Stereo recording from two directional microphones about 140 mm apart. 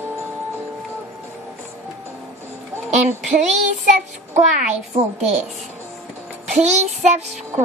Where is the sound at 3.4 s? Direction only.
55° right (ahead or behind).